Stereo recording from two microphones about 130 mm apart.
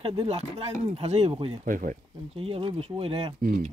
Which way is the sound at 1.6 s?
90° right.